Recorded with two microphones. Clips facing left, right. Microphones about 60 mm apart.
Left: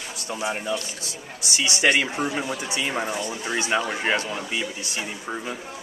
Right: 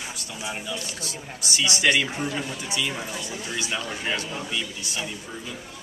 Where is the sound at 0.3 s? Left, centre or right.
Left.